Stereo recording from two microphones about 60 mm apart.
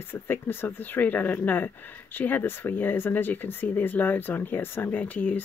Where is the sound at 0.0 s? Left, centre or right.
Left.